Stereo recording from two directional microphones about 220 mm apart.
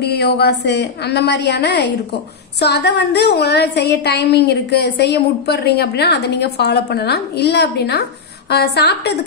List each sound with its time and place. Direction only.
0.0 s a woman's voice: 45° left (ahead or behind)